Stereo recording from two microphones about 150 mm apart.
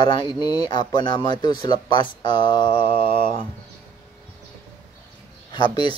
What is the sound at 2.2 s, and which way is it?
Mantra, 30° left (ahead or behind).